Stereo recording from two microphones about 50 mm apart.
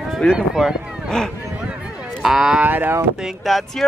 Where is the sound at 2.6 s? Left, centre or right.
Right.